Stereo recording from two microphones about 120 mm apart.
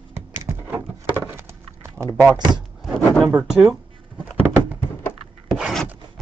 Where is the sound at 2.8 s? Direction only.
5° left (ahead or behind).